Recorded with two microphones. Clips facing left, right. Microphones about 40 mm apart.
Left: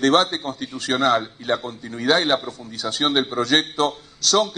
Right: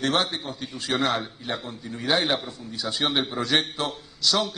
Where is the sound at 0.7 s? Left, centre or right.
Centre.